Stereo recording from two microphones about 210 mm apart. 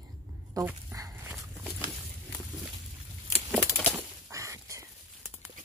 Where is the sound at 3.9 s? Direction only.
10° right (ahead or behind).